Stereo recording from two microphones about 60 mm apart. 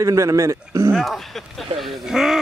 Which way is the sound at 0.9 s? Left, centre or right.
Centre.